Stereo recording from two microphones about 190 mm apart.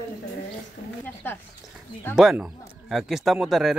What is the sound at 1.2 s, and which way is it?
Speech, 10° left (ahead or behind).